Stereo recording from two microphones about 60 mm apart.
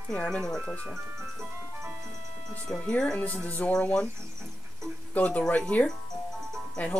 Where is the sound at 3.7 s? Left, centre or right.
Centre.